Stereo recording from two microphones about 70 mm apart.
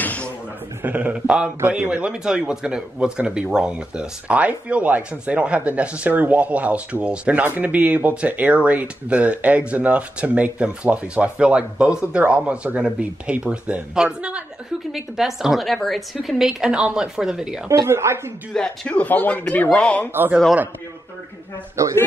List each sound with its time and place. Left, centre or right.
0.0 s a sound: left
0.8 s speech: right
14.9 s a woman's voice: centre
17.6 s speech: right
18.5 s speech: centre
20.1 s speech: right
21.8 s a man's voice: right